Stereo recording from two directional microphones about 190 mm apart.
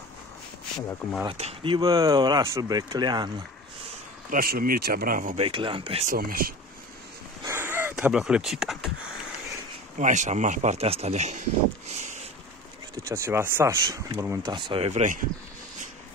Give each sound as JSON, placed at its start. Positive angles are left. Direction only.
{"t": 1.3, "sound": "speech", "side_deg": -30}
{"t": 4.3, "sound": "speech", "side_deg": -50}
{"t": 5.4, "sound": "speech", "side_deg": -25}
{"t": 6.0, "sound": "speech", "side_deg": -50}
{"t": 7.4, "sound": "a sound", "side_deg": -10}
{"t": 9.9, "sound": "speech", "side_deg": -40}
{"t": 11.9, "sound": "a sound", "side_deg": -40}
{"t": 12.9, "sound": "speech", "side_deg": -15}